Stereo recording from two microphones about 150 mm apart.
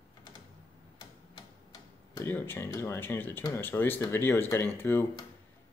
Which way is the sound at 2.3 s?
15° left (ahead or behind).